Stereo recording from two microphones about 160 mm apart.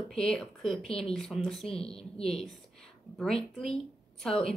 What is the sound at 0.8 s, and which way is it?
Speech, 35° left (ahead or behind).